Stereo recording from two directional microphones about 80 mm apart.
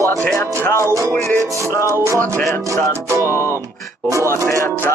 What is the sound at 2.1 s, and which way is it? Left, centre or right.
Music, centre.